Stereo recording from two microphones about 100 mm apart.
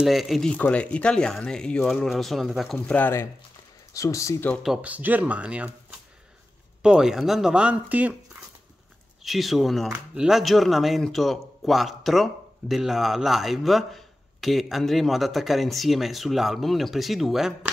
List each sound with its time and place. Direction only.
0.0 s speech: centre (ahead or behind)
0.5 s speech: 10° left (ahead or behind)
2.0 s speech: centre (ahead or behind)
2.9 s speech: 20° left (ahead or behind)
3.9 s speech: 30° left (ahead or behind)
4.8 s speech: 15° right (ahead or behind)
9.2 s speech: centre (ahead or behind)